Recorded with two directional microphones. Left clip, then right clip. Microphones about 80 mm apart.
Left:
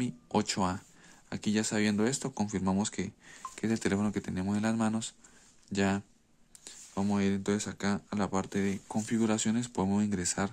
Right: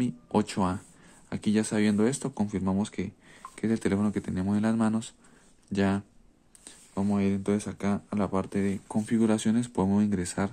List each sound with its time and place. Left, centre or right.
0.0 s speech: left
4.5 s speech: centre
6.9 s speech: left
9.0 s speech: centre